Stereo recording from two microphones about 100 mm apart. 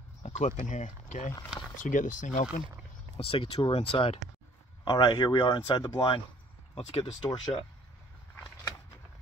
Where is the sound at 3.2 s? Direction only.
70° left (ahead or behind).